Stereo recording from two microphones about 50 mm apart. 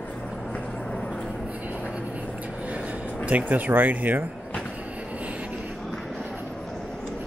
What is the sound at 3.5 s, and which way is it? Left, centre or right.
Speech, right.